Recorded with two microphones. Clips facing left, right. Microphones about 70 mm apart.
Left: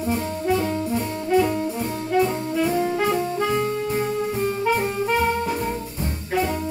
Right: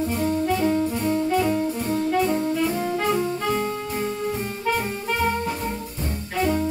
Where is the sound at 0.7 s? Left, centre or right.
Centre.